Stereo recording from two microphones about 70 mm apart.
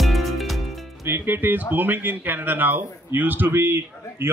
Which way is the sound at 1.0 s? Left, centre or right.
Right.